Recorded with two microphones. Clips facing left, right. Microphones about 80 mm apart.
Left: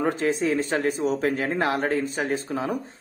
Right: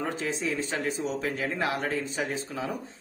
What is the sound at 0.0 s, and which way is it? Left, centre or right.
Speech, left.